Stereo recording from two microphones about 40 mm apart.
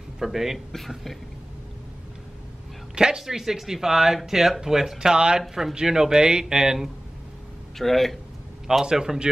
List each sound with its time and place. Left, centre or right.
0.2 s speech: centre
0.7 s speech: centre
3.0 s speech: centre
7.7 s speech: centre
8.9 s speech: centre